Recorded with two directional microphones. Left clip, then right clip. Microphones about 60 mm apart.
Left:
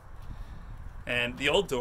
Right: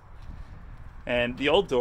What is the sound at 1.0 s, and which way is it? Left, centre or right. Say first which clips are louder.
Speech: right 3 dB; right.